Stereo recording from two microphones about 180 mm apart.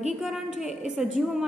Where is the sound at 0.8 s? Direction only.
5° right (ahead or behind).